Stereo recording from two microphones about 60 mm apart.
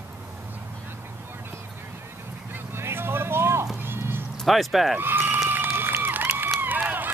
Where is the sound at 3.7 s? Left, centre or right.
Right.